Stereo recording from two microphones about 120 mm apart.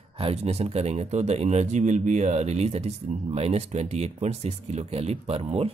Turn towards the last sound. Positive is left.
turn(degrees=-55)  # may be behind; listen again after turning